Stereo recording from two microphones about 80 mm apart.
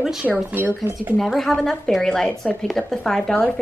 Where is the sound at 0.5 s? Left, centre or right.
Right.